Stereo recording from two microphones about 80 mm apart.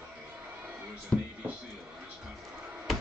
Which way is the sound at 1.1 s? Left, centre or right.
Centre.